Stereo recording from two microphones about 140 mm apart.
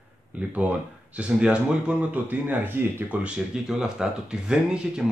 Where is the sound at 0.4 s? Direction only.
10° right (ahead or behind).